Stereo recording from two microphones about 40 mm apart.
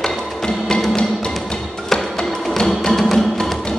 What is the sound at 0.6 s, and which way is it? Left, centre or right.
Music, centre.